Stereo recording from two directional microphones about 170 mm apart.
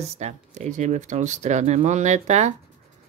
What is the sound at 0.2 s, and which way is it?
Speech, 45° right (ahead or behind).